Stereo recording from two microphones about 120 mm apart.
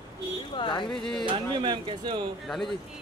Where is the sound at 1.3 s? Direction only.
40° right (ahead or behind).